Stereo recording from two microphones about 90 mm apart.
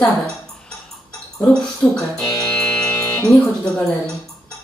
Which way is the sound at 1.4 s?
10° left (ahead or behind).